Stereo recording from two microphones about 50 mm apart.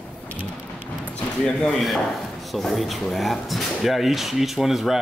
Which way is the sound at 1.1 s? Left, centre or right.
Centre.